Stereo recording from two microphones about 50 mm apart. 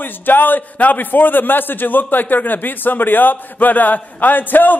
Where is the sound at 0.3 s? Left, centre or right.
Left.